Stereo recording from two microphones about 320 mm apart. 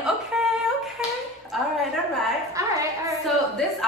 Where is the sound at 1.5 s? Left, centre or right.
Centre.